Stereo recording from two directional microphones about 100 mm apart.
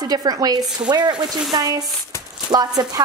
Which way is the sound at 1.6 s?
40° right (ahead or behind).